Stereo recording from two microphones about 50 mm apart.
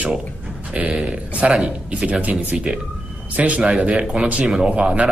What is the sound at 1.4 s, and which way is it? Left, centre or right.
Speech, centre.